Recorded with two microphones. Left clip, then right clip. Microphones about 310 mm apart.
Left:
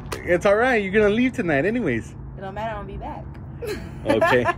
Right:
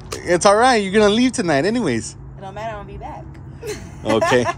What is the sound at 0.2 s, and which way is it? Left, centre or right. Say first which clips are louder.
Speech: right 5 dB; centre.